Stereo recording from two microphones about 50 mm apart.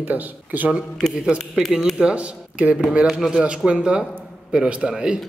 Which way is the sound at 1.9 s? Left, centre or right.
Right.